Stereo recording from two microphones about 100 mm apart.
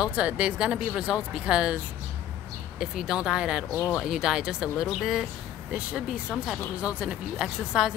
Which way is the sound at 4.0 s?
5° right (ahead or behind).